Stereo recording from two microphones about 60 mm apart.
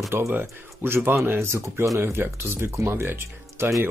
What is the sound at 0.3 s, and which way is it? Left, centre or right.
Speech, right.